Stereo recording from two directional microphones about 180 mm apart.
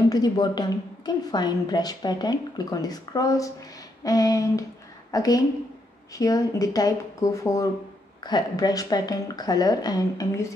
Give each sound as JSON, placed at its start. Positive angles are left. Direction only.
{"t": 0.1, "sound": "a woman's voice", "side_deg": 20}